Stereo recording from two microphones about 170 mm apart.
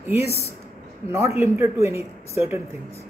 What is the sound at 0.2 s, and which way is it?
A man's voice, 15° right (ahead or behind).